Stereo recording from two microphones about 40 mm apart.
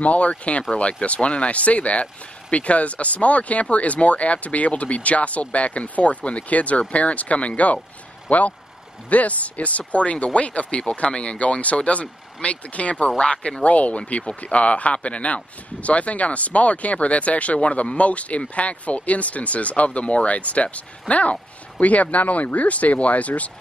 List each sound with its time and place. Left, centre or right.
0.0 s speech: left